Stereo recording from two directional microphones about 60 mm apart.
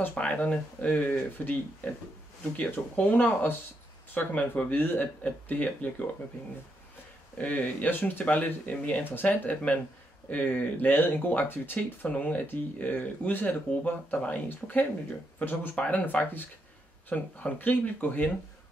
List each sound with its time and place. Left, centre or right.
0.1 s speech: left
7.3 s speech: left